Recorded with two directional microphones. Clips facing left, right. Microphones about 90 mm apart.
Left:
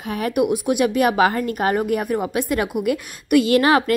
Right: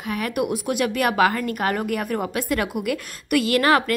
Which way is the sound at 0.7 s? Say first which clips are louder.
Left 3 dB; 15° left (ahead or behind).